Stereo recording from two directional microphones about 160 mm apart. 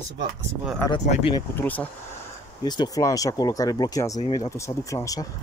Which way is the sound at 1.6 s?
10° left (ahead or behind).